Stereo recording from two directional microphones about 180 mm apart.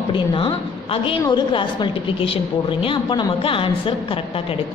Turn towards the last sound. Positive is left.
turn(degrees=30)  # may be behind; listen again after turning